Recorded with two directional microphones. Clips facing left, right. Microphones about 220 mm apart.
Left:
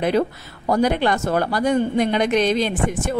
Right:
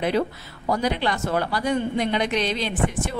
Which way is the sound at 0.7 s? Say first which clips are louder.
Left 5 dB; 50° left (ahead or behind).